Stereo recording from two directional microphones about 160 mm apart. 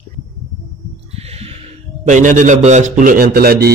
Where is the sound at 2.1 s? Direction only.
50° right (ahead or behind); by 3.7 s 70° right (ahead or behind).